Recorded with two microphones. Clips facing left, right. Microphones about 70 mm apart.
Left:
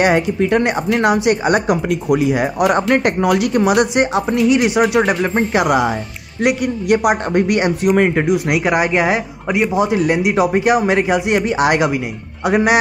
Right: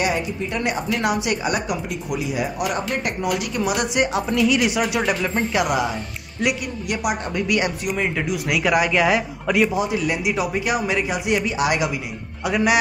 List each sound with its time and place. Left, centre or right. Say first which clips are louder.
0.0 s speech: left 9 dB; left
1.0 s speech: left 8 dB; left
2.0 s speech: left 9 dB; left
3.9 s speech: left 5 dB; left
9.8 s speech: left 7 dB; left
12.4 s speech: left 5 dB; left